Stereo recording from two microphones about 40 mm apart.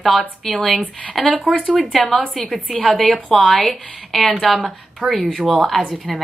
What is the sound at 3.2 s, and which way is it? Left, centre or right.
Speech, left.